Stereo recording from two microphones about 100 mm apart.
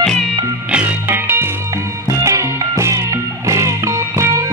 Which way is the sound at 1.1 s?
20° right (ahead or behind).